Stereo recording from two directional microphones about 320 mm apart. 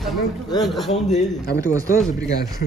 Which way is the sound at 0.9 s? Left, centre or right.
Left.